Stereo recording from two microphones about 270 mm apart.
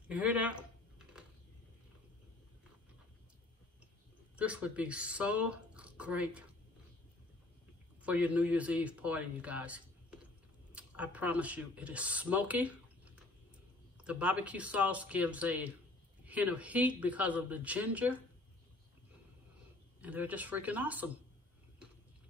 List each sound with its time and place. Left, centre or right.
0.1 s typing: centre
4.4 s speech: centre
8.0 s speech: centre
20.0 s speech: centre